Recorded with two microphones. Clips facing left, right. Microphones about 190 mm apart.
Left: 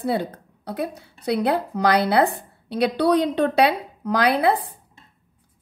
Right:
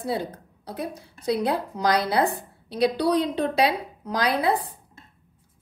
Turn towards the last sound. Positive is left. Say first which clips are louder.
# left 5 dB
turn(degrees=65)  # may be behind; listen again after turning